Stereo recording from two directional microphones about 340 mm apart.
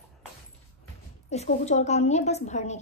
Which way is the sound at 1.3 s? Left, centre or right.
Centre.